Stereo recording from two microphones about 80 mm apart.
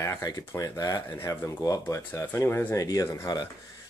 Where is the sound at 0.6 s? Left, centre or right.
Left.